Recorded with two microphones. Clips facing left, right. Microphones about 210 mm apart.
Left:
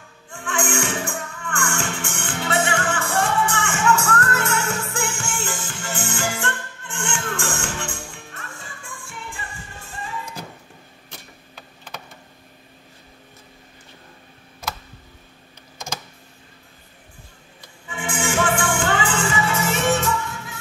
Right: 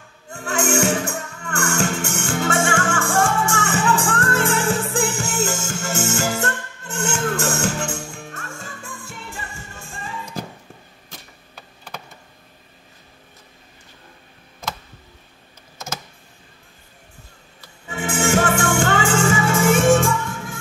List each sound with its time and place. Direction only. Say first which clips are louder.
0.3 s music: right 4 dB; 40° right (ahead or behind)
17.8 s music: right 4 dB; 40° right (ahead or behind)